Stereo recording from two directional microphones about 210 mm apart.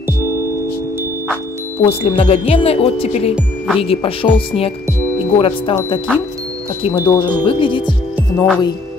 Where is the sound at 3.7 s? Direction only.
25° left (ahead or behind).